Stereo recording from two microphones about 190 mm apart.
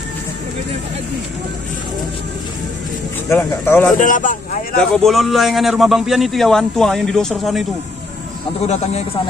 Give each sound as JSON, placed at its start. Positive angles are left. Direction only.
{"t": 3.3, "sound": "speech", "side_deg": 15}
{"t": 4.0, "sound": "a man's voice", "side_deg": 45}
{"t": 4.7, "sound": "a man's voice", "side_deg": 5}
{"t": 8.6, "sound": "a man's voice", "side_deg": 35}